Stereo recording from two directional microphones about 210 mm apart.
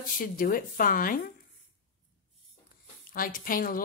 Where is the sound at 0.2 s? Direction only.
40° left (ahead or behind).